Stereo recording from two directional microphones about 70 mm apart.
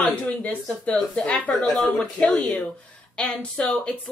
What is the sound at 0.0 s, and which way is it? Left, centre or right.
A woman's voice, centre.